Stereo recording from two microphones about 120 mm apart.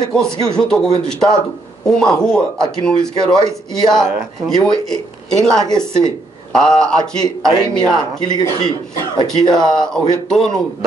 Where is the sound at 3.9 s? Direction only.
5° left (ahead or behind).